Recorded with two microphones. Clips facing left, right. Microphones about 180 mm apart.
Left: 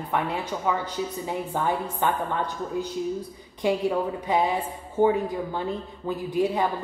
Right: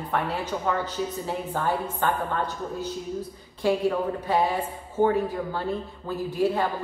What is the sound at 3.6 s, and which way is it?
A woman's voice, 15° left (ahead or behind).